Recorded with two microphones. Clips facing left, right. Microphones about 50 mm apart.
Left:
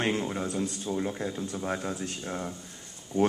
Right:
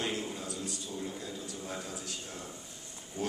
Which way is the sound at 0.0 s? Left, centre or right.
Left.